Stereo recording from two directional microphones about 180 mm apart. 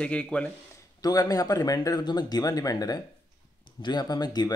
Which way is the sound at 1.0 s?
20° left (ahead or behind).